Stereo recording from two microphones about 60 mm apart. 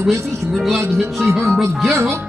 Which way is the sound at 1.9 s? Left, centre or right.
Right.